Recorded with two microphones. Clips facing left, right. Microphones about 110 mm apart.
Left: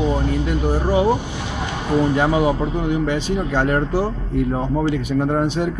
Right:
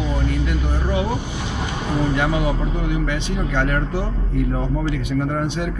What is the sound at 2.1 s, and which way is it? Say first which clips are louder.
A man's voice: left 4 dB; 30° left (ahead or behind).